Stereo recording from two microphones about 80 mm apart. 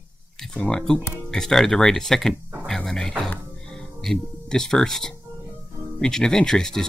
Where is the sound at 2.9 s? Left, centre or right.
Centre.